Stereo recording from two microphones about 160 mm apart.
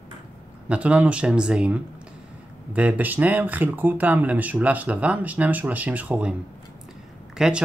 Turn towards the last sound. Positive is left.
turn(degrees=-5)  # may be behind; listen again after turning